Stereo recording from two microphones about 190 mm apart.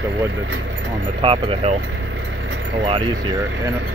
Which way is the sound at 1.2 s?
30° right (ahead or behind).